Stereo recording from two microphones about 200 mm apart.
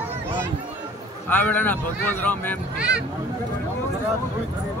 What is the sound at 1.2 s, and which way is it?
Speech, 10° left (ahead or behind).